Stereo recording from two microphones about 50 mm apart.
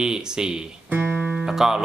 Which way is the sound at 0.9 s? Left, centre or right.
Right.